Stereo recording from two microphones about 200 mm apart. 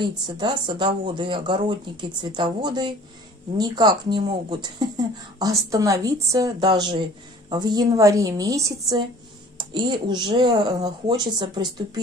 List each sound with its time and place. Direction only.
0.4 s speech: 25° right (ahead or behind)